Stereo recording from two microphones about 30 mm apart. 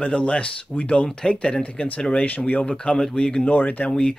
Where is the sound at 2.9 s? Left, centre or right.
Centre.